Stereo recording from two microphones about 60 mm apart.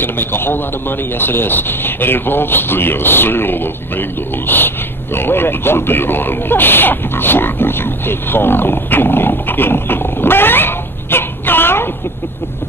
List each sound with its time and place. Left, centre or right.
0.0 s speech: left